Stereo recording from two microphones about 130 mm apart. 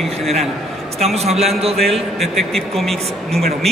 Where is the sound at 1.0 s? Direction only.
55° right (ahead or behind).